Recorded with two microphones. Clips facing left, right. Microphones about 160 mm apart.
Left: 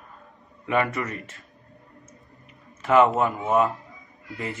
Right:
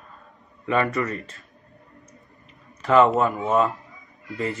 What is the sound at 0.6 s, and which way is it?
Speech, 15° left (ahead or behind).